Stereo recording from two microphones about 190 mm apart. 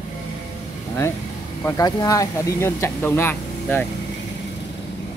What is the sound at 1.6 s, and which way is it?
Speech, 20° left (ahead or behind).